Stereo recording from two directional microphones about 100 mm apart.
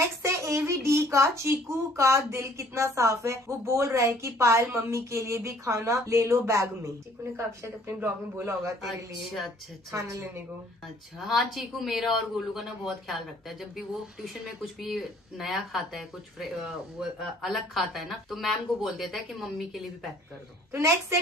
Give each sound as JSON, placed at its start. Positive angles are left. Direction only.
{"t": 0.0, "sound": "a child's voice", "side_deg": -30}
{"t": 8.8, "sound": "speech", "side_deg": 0}
{"t": 9.8, "sound": "a child's voice", "side_deg": -30}
{"t": 11.1, "sound": "speech", "side_deg": 0}